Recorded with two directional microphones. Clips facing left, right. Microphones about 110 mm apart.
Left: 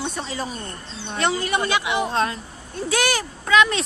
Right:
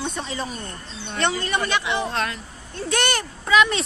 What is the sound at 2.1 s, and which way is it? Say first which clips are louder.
Speech: left 4 dB; 30° left (ahead or behind).